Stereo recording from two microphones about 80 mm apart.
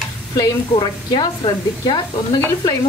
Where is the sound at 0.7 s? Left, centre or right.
Left.